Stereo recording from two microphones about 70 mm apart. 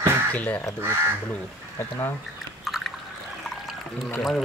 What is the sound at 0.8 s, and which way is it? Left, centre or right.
Speech, right.